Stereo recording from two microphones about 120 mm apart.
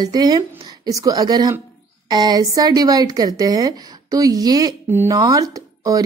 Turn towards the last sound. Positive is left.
turn(degrees=-30)  # may be behind; listen again after turning